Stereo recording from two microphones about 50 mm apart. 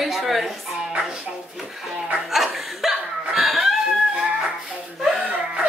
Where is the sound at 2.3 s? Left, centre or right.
Centre.